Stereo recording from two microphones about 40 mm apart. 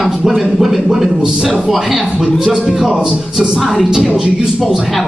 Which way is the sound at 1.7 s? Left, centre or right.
Centre.